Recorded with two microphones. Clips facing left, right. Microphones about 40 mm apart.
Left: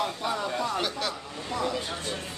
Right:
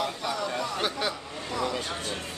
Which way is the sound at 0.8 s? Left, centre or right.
Centre.